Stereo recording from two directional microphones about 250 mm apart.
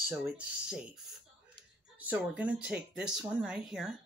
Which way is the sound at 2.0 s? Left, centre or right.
Centre.